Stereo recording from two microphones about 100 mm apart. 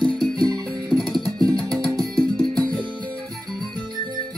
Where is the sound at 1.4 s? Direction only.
5° left (ahead or behind).